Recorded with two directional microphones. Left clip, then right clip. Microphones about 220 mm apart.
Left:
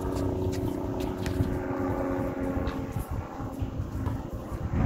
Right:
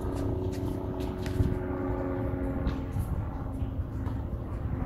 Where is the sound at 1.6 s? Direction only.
30° left (ahead or behind).